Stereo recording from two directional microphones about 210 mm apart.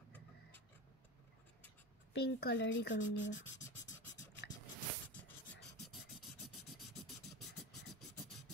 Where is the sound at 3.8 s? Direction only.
60° left (ahead or behind).